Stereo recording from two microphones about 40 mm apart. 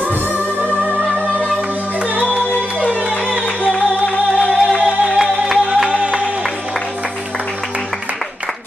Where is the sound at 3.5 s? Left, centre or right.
Left.